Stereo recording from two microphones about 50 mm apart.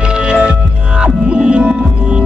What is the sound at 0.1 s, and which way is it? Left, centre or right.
Music, centre.